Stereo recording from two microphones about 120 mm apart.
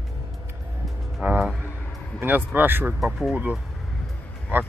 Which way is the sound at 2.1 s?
15° right (ahead or behind).